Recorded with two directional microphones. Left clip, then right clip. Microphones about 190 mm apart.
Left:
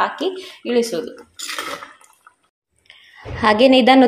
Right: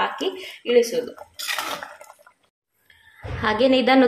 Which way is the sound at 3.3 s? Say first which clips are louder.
Left 6 dB; 25° left (ahead or behind).